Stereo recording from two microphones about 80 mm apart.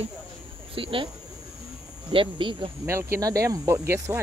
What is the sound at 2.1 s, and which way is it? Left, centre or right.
Speech, right.